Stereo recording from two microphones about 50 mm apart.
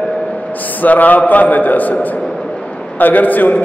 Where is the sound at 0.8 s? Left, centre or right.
Left.